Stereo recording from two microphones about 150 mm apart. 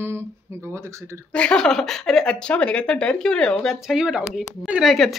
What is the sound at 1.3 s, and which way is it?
Speech, 5° left (ahead or behind).